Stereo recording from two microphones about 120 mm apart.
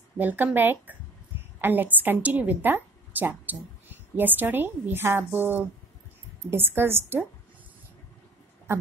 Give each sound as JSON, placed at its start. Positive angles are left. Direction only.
{"t": 0.2, "sound": "a woman's voice", "side_deg": -15}